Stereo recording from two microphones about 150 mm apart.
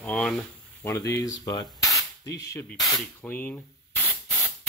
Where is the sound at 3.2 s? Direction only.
10° left (ahead or behind).